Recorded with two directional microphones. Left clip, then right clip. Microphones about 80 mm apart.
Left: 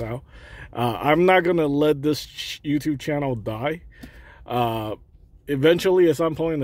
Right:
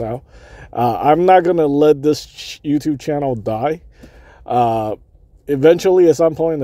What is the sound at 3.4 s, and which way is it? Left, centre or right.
Speech, right.